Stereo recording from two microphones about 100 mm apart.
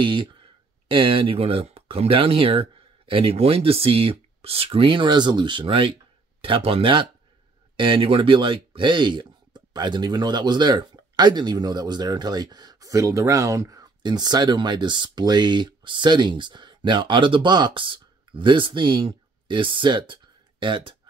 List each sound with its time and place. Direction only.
0.0 s speech: 55° right (ahead or behind)